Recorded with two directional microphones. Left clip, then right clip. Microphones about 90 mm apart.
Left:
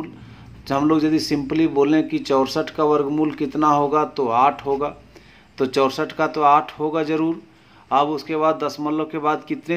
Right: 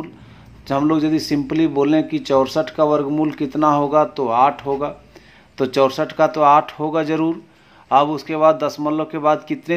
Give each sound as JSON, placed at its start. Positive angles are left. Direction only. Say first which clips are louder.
{"t": 0.7, "sound": "a man's voice", "louder": "right 1 dB", "side_deg": -15}